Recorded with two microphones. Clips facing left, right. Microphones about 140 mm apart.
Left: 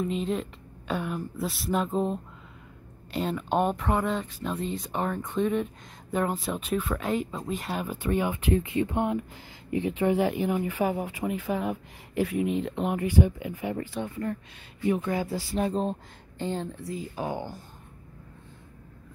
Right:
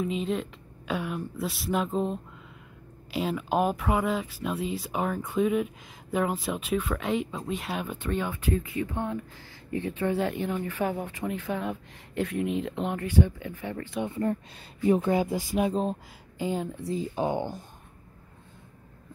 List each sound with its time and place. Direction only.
0.0 s speech: centre (ahead or behind)
12.9 s speech: 10° left (ahead or behind)
14.0 s speech: 25° right (ahead or behind); by 16.8 s 10° right (ahead or behind)
16.8 s speech: 25° right (ahead or behind)